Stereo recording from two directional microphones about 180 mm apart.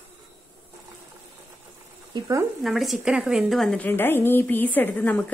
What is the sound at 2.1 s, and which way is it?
Speech, 20° right (ahead or behind).